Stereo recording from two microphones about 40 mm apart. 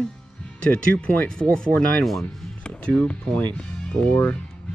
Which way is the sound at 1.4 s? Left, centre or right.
Centre.